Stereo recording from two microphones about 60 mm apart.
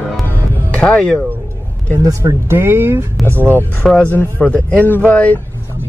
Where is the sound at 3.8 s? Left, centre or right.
Centre.